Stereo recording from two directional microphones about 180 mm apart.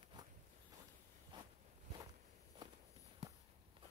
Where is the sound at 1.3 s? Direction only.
25° right (ahead or behind).